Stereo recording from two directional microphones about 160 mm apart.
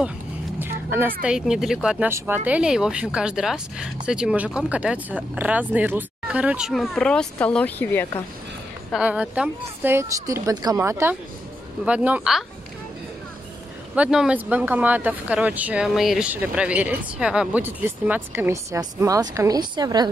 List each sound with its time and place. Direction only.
0.6 s vehicle: 10° right (ahead or behind)
1.2 s speech: 5° right (ahead or behind); by 8.1 s 10° left (ahead or behind)
8.9 s speech: 5° right (ahead or behind)
13.9 s speech: 5° right (ahead or behind); by 20.1 s 25° right (ahead or behind)